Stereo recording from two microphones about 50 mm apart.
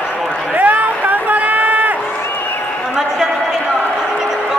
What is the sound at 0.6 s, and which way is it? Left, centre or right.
Crowd, right.